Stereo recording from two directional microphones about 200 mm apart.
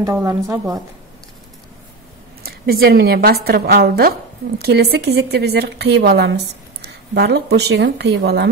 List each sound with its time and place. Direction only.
0.0 s a woman's voice: 15° right (ahead or behind)
2.4 s a woman's voice: 50° right (ahead or behind)